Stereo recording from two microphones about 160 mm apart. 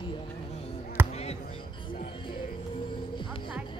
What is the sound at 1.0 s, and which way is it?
Basketball bounce, 15° right (ahead or behind).